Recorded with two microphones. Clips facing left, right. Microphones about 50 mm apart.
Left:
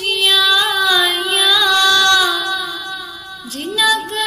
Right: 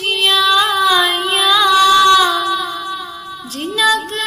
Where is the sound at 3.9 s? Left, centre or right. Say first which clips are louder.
Right 1 dB; centre.